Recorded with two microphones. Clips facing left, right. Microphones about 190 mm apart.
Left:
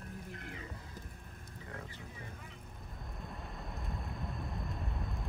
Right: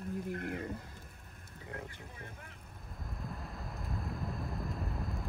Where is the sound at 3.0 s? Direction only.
Centre (ahead or behind).